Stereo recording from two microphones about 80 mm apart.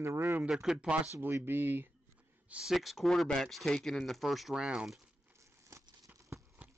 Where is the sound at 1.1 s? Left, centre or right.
Right.